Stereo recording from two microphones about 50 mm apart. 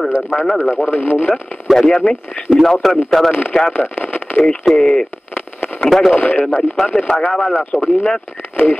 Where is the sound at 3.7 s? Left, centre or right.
Left.